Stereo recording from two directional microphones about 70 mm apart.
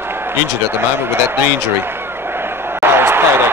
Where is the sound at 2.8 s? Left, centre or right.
Right.